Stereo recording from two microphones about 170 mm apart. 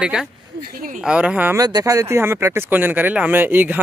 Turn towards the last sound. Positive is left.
turn(degrees=-10)  # may be behind; listen again after turning